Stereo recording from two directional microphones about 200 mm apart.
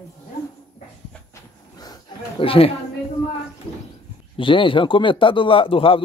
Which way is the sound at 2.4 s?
25° left (ahead or behind).